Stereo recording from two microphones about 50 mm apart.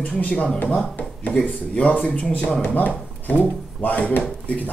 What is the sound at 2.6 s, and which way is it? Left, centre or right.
Speech, left.